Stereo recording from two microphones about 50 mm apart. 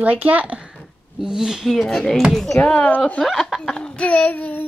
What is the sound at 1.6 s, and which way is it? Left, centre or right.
Speech, centre.